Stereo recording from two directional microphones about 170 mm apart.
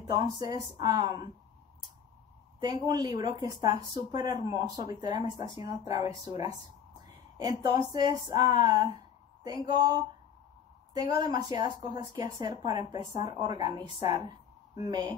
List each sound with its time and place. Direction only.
0.0 s speech: 25° right (ahead or behind)
2.6 s speech: 25° right (ahead or behind)
7.3 s speech: 20° right (ahead or behind)